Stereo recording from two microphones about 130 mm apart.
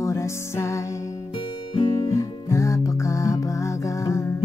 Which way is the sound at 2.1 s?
25° left (ahead or behind).